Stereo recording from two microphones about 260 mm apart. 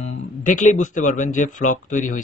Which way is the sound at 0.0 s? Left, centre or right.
Left.